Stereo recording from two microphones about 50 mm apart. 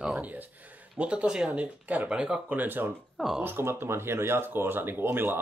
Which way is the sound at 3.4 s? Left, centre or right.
Right.